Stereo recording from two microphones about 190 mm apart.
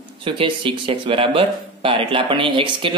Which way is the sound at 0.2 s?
25° right (ahead or behind).